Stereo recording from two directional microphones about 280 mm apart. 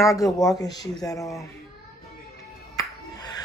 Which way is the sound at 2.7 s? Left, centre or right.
Centre.